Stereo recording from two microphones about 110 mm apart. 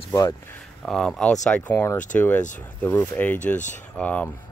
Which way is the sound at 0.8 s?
5° left (ahead or behind).